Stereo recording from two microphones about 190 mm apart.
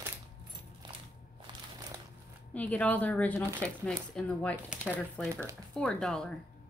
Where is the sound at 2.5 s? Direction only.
5° left (ahead or behind).